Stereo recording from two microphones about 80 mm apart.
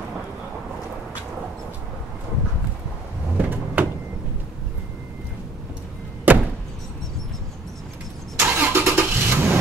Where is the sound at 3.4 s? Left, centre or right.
Centre.